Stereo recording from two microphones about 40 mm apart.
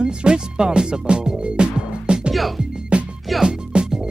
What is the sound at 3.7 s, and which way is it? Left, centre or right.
Music, right.